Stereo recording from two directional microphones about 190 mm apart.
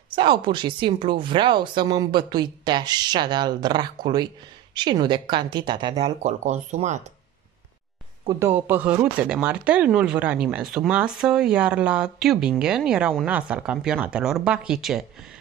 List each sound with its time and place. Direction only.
0.1 s a woman's voice: 25° right (ahead or behind)
8.3 s speech: 15° right (ahead or behind)